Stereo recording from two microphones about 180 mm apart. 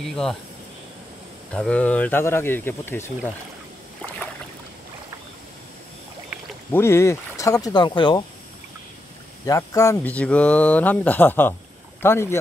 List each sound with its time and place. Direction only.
0.0 s speech: centre (ahead or behind)
1.5 s speech: 5° left (ahead or behind)
6.7 s speech: 15° left (ahead or behind)
9.5 s speech: 15° left (ahead or behind)